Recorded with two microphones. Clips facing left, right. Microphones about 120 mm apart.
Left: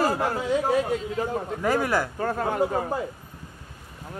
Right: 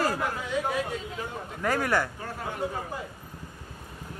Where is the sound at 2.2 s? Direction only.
55° left (ahead or behind).